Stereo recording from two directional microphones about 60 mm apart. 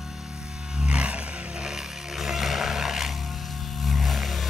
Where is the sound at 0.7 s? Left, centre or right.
Centre.